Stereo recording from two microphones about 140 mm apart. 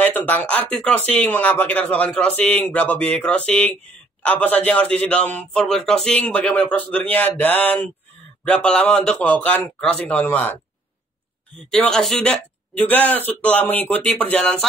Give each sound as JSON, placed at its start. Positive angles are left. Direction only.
{"t": 0.0, "sound": "a man's voice", "side_deg": 10}
{"t": 11.7, "sound": "a man's voice", "side_deg": 5}